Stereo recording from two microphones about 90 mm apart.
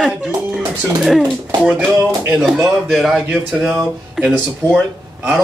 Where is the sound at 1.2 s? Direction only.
20° right (ahead or behind).